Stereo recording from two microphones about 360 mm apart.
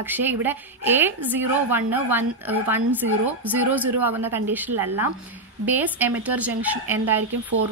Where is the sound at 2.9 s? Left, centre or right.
Right.